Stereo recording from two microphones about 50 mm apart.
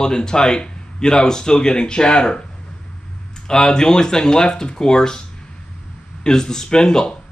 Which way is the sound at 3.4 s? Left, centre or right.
Centre.